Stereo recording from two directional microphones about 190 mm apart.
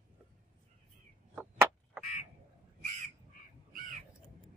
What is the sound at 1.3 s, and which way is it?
Chop, 5° right (ahead or behind).